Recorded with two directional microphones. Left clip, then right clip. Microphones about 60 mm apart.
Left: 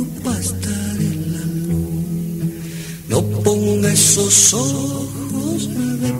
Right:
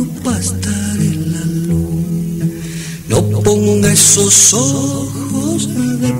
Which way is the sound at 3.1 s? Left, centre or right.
Left.